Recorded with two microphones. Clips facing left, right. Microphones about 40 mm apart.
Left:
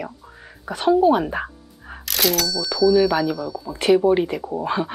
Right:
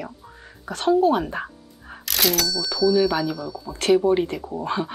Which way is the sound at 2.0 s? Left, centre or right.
Centre.